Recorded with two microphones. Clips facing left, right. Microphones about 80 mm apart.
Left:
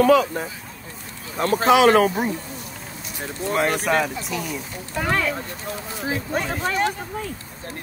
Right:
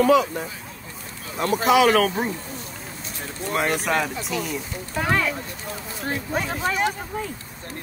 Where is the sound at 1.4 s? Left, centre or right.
Left.